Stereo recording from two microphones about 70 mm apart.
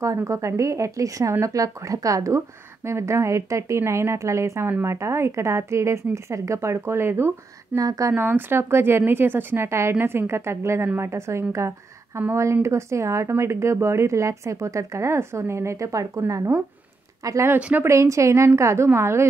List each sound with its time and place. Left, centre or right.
0.0 s a woman's voice: right
7.7 s speech: right
8.1 s a woman's voice: right
17.6 s a woman's voice: centre
17.8 s a woman's voice: right